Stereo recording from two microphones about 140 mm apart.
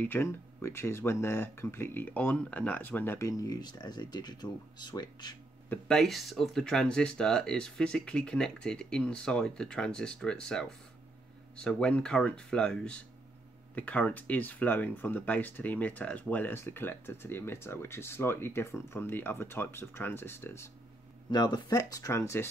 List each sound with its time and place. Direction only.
0.0 s speech: 15° left (ahead or behind)
5.7 s speech: 5° left (ahead or behind)
21.3 s speech: 30° left (ahead or behind)